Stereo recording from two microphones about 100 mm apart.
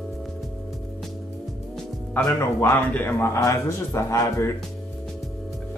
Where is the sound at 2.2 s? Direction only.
15° left (ahead or behind).